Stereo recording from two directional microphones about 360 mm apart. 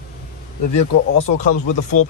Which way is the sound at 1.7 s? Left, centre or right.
Left.